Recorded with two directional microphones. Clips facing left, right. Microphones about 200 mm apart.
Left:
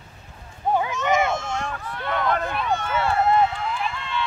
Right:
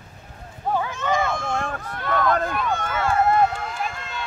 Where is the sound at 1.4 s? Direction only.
55° right (ahead or behind).